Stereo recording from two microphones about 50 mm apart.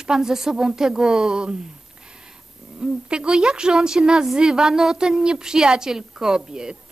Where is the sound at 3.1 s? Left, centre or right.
Centre.